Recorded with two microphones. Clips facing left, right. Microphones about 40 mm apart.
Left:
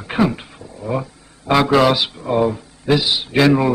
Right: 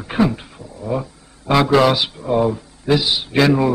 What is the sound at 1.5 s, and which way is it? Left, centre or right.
A man's voice, centre.